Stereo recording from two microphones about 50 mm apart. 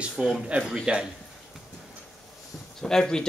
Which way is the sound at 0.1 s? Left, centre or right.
Centre.